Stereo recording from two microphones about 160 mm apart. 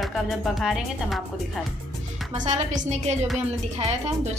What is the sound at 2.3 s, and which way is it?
Speech, 50° right (ahead or behind).